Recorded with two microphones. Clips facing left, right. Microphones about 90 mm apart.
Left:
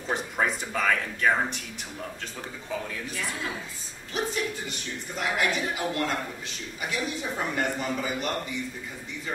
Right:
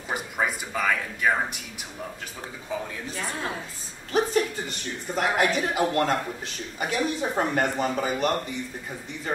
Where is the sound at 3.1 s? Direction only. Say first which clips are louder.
Right 2 dB; 35° right (ahead or behind).